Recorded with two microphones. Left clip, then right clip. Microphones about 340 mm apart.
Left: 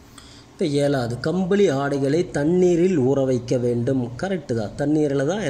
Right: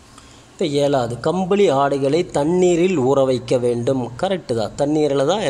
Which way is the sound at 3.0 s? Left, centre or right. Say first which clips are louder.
Right 4 dB; right.